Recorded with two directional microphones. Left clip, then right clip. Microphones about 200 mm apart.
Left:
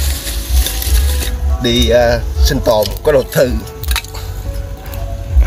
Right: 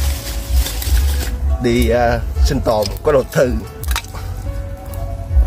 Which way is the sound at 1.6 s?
10° right (ahead or behind).